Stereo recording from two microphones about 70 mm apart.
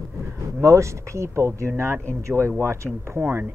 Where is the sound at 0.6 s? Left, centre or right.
Right.